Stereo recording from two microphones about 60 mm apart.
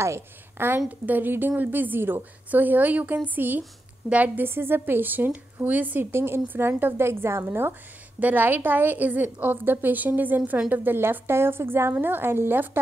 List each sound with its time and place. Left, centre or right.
0.0 s a woman's voice: right
0.7 s a woman's voice: right
4.5 s a woman's voice: right
6.1 s a woman's voice: right